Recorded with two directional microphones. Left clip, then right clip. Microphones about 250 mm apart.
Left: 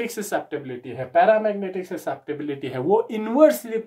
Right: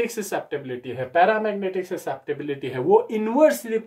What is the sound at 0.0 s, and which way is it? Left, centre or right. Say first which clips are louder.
Speech: even; centre.